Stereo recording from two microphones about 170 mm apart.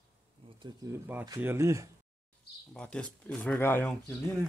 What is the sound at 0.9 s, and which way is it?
Speech, 10° right (ahead or behind).